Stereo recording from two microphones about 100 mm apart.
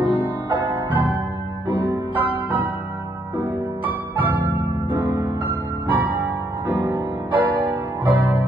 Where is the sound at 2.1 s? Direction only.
55° right (ahead or behind).